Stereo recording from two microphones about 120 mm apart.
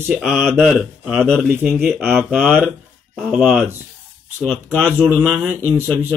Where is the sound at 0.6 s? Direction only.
5° right (ahead or behind).